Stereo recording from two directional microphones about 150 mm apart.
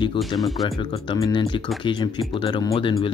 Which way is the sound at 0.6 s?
30° left (ahead or behind).